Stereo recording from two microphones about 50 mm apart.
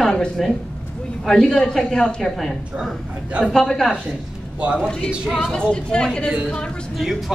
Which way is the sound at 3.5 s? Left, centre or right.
Centre.